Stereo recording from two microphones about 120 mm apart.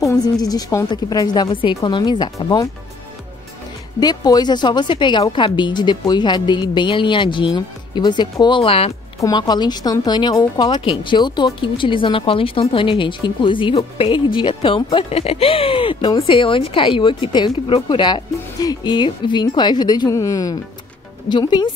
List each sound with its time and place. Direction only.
0.0 s a woman's voice: 30° left (ahead or behind)
4.0 s a woman's voice: 35° left (ahead or behind); by 8.9 s 50° left (ahead or behind)
9.2 s speech: 35° left (ahead or behind)
15.0 s a woman's voice: 55° left (ahead or behind); by 21.6 s 40° left (ahead or behind)